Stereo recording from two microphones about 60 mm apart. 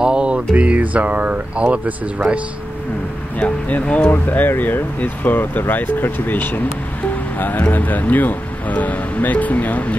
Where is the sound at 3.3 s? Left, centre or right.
Left.